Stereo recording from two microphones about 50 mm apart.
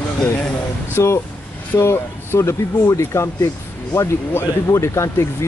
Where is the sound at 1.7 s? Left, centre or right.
Left.